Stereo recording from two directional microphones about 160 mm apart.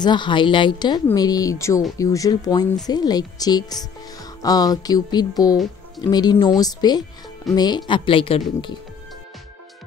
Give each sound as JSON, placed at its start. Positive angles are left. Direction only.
{"t": 0.0, "sound": "music", "side_deg": 30}
{"t": 5.9, "sound": "speech", "side_deg": 25}
{"t": 6.4, "sound": "music", "side_deg": 25}
{"t": 7.5, "sound": "speech", "side_deg": 25}